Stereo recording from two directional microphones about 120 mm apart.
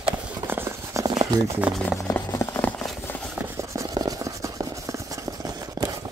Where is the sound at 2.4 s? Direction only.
15° left (ahead or behind).